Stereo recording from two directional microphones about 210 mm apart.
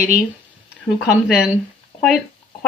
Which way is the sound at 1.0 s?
5° right (ahead or behind).